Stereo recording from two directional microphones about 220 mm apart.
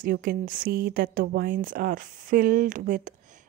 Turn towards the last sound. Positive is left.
turn(degrees=-35)  # may be behind; listen again after turning